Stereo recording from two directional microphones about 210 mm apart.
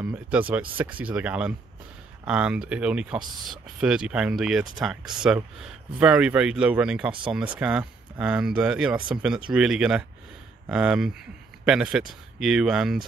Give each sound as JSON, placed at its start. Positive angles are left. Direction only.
{"t": 0.0, "sound": "speech", "side_deg": -10}
{"t": 7.1, "sound": "speech", "side_deg": -25}
{"t": 7.3, "sound": "speech", "side_deg": -5}